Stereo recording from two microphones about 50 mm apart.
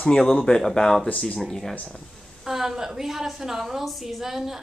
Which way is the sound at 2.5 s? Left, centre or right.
Centre.